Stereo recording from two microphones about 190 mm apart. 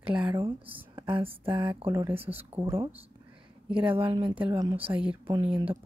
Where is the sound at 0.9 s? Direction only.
25° right (ahead or behind); by 4.0 s 5° right (ahead or behind).